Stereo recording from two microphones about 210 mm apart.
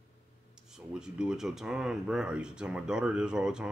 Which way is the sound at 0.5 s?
5° right (ahead or behind).